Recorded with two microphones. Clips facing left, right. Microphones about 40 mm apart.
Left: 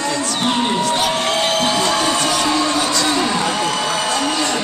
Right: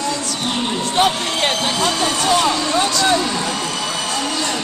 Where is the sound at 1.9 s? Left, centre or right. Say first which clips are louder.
Left 1 dB; centre.